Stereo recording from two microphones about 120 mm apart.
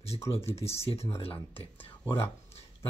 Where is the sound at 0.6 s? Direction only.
60° left (ahead or behind).